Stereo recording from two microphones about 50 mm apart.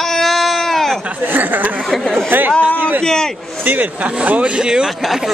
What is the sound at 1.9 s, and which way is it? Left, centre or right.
Speech, centre.